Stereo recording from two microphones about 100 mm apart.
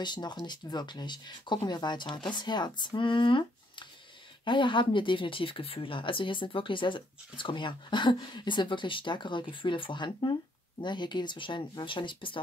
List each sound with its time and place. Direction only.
0.0 s speech: 45° left (ahead or behind)